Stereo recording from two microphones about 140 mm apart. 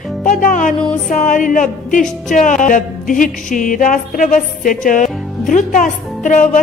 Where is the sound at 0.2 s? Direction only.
70° left (ahead or behind).